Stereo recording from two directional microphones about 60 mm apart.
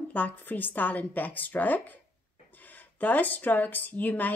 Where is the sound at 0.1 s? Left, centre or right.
Left.